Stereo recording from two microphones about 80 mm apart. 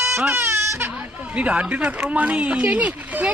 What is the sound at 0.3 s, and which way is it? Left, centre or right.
Baby cry, right.